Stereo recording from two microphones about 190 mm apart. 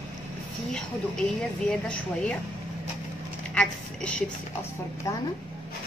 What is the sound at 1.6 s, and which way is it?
Speech, 5° left (ahead or behind).